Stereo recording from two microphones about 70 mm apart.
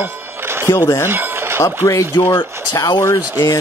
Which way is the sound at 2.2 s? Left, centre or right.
Left.